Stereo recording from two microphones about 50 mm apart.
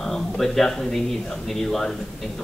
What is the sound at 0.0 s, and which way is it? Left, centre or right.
Speech, centre.